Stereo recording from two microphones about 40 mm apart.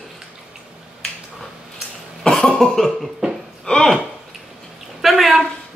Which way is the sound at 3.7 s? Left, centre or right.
Centre.